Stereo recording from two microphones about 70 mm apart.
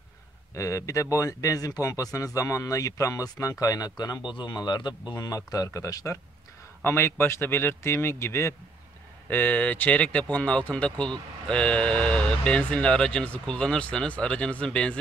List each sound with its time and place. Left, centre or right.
0.6 s speech: left
4.5 s speech: left
5.2 s speech: left
6.8 s speech: left
9.3 s speech: left